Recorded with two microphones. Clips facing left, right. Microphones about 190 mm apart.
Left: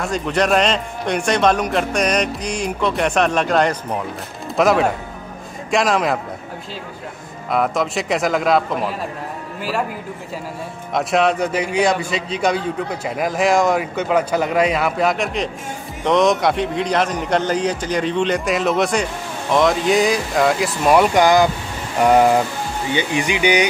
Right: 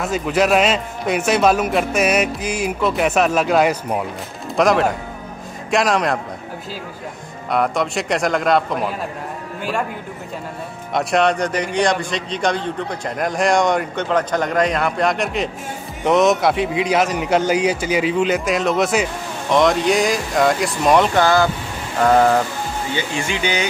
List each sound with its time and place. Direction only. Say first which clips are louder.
0.0 s a man's voice: right 1 dB; 5° right (ahead or behind)
7.4 s a man's voice: even; centre (ahead or behind)
10.9 s a man's voice: even; centre (ahead or behind); by 23.7 s 15° left (ahead or behind)